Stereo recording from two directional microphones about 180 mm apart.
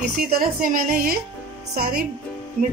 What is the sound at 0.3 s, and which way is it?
A woman's voice, 55° right (ahead or behind).